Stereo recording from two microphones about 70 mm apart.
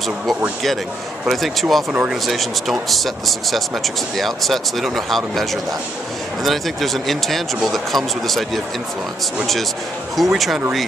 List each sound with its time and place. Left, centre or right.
1.2 s speech: centre
1.9 s speech: centre
2.2 s speech: centre
10.1 s speech: centre